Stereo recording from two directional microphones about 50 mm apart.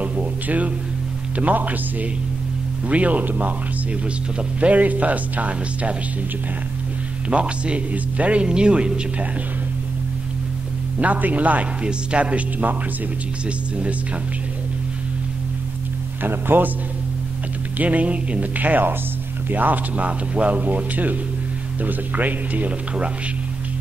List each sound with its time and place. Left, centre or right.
0.0 s a sound: right
1.4 s a man's voice: right
7.2 s speech: right
11.0 s a man's voice: right
16.2 s a man's voice: right
17.7 s a man's voice: right